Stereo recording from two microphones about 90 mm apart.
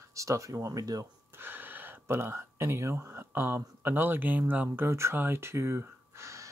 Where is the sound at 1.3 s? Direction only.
25° right (ahead or behind).